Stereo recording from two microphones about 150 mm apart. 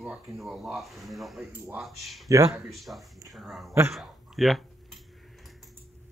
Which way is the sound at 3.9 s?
Centre (ahead or behind).